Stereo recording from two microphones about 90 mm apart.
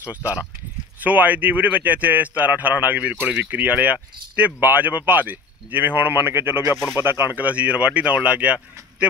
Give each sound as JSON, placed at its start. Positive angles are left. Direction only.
{"t": 0.1, "sound": "speech", "side_deg": -15}